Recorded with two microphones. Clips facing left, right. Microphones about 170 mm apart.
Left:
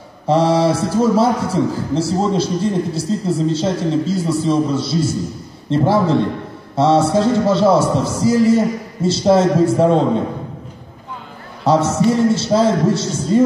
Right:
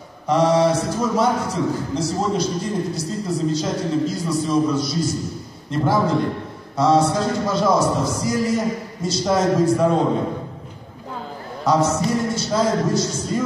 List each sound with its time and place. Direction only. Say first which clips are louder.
0.3 s a man's voice: left 2 dB; 30° left (ahead or behind)
11.6 s a man's voice: left 4 dB; 25° left (ahead or behind)